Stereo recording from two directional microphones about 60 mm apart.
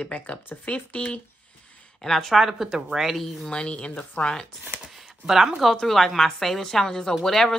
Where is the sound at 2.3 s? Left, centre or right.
Centre.